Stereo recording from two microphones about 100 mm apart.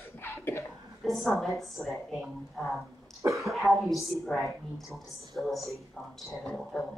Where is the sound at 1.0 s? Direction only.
5° left (ahead or behind).